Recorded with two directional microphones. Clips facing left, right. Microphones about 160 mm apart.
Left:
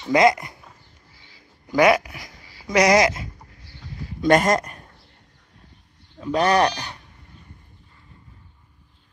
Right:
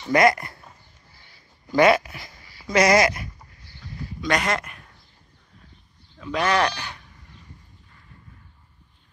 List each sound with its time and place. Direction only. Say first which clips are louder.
0.1 s speech: left 1 dB; 20° left (ahead or behind)
1.7 s speech: even; 15° left (ahead or behind)
4.2 s speech: left 7 dB; 45° left (ahead or behind)
6.2 s speech: left 4 dB; 35° left (ahead or behind)